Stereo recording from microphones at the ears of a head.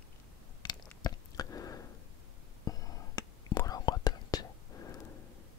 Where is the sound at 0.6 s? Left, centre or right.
Left.